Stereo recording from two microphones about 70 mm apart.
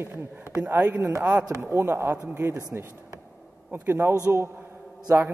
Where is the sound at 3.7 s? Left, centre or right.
Right.